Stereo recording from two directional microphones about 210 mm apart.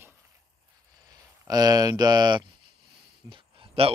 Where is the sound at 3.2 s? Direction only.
25° right (ahead or behind).